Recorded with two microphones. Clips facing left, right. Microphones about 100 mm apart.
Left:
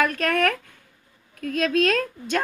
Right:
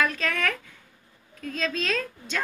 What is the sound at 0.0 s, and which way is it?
A woman's voice, 55° left (ahead or behind).